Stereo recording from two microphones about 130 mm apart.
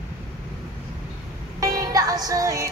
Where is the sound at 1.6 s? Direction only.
25° right (ahead or behind).